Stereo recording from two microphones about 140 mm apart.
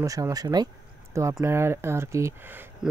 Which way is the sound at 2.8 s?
5° right (ahead or behind).